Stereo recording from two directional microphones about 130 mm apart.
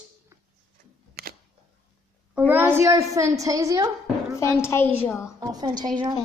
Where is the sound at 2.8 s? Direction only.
25° right (ahead or behind).